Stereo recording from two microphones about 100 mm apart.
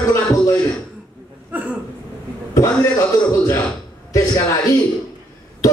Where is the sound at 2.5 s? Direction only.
35° left (ahead or behind).